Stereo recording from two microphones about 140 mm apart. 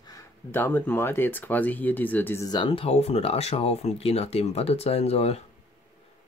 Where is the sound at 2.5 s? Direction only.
35° left (ahead or behind).